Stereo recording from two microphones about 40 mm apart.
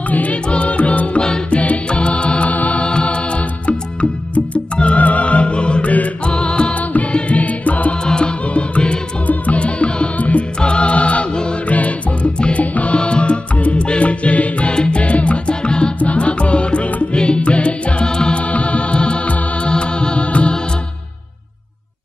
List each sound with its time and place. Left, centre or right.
0.1 s music: left
1.2 s music: left
2.5 s music: left
2.8 s music: left
4.7 s music: left
6.2 s music: left
8.0 s music: centre; by 12.3 s left
12.4 s music: left
18.5 s music: left